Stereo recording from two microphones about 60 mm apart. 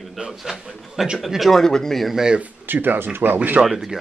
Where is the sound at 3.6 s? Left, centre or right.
Centre.